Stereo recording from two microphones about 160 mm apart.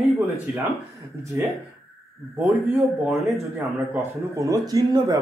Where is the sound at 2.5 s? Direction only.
10° right (ahead or behind).